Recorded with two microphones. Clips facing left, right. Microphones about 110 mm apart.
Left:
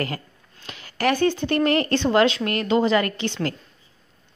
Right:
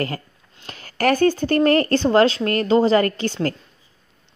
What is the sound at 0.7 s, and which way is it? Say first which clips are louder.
Speech: right 3 dB; 45° right (ahead or behind).